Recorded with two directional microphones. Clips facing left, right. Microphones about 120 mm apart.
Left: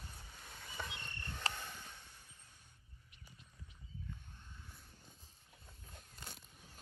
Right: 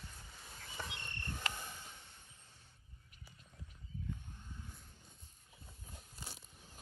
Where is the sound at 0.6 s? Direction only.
Centre (ahead or behind).